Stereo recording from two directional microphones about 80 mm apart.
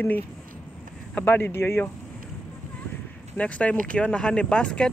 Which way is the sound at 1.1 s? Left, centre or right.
Left.